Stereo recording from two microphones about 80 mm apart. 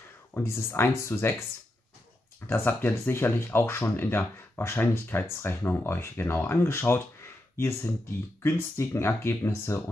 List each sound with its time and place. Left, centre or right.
0.3 s speech: left
2.4 s speech: left